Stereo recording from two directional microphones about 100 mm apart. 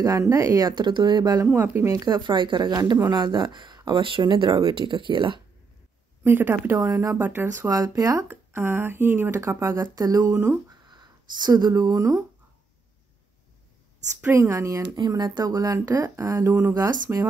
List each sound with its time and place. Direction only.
0.0 s speech: 30° right (ahead or behind)
1.4 s speech: 20° right (ahead or behind)
1.9 s speech: 45° right (ahead or behind)
6.2 s speech: 20° right (ahead or behind)
7.7 s speech: 35° right (ahead or behind)
8.3 s speech: 25° right (ahead or behind)
9.8 s speech: 40° right (ahead or behind)
10.3 s speech: 20° right (ahead or behind)
10.9 s speech: 45° right (ahead or behind)
14.3 s speech: 30° right (ahead or behind)
15.0 s speech: 45° right (ahead or behind)